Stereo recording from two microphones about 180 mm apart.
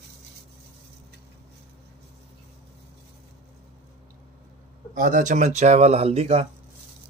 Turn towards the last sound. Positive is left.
turn(degrees=-35)  # may be behind; listen again after turning